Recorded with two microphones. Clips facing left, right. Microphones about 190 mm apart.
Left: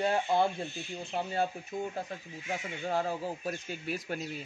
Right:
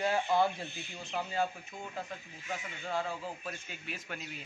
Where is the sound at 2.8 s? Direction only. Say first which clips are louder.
Left 4 dB; 40° left (ahead or behind).